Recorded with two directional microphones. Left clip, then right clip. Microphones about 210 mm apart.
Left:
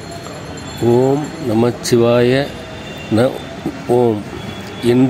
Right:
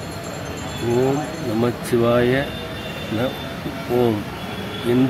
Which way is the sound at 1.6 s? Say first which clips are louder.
Left 6 dB; 30° left (ahead or behind).